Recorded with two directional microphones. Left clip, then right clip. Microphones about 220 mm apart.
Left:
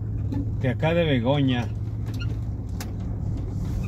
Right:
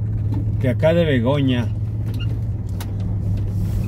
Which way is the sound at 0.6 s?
15° right (ahead or behind).